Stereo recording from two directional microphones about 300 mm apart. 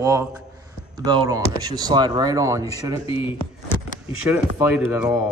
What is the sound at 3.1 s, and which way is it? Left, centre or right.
Speech, centre.